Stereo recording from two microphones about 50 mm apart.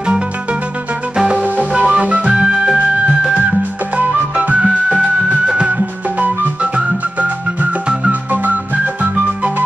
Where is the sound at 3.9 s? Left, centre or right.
Right.